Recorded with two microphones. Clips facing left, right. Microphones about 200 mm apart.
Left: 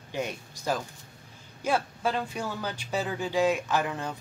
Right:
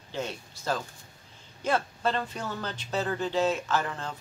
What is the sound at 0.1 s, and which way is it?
A man's voice, 15° left (ahead or behind).